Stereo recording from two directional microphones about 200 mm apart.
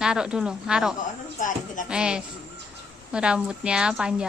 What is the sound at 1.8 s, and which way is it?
Speech, 5° right (ahead or behind).